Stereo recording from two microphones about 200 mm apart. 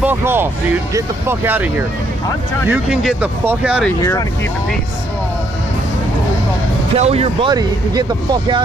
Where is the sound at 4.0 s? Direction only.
15° left (ahead or behind).